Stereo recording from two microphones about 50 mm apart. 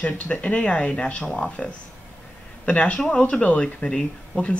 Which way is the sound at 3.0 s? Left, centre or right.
Centre.